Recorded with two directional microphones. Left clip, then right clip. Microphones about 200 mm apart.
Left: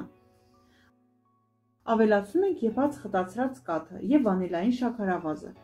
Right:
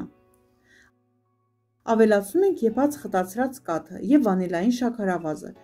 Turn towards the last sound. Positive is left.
turn(degrees=-50)  # may be behind; listen again after turning